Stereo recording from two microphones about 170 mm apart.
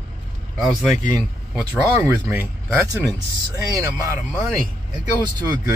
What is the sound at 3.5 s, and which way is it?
Speech, 20° right (ahead or behind).